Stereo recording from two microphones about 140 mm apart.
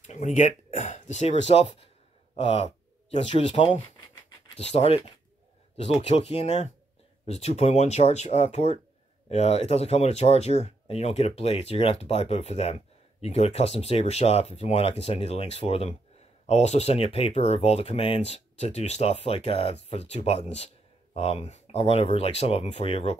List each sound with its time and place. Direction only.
0.0 s speech: 55° left (ahead or behind)
6.0 s speech: 50° left (ahead or behind)